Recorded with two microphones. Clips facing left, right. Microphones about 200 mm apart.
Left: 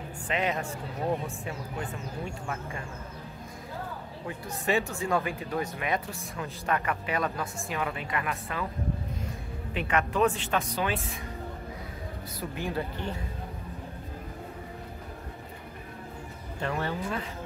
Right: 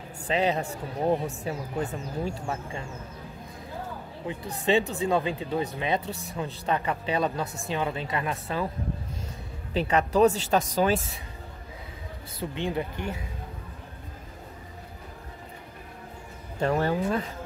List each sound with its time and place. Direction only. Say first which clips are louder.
0.3 s speech: right 4 dB; 30° right (ahead or behind)
4.9 s speech: right 3 dB; 20° right (ahead or behind)
9.8 s speech: right 5 dB; 35° right (ahead or behind)
12.4 s speech: right 3 dB; 20° right (ahead or behind)
16.6 s speech: right 7 dB; 40° right (ahead or behind)